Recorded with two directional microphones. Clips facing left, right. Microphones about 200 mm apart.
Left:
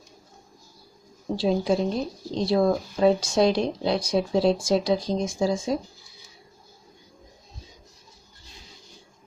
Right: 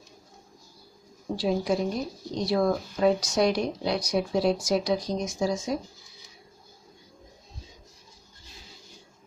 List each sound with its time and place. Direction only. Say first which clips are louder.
1.3 s speech: left 3 dB; 25° left (ahead or behind)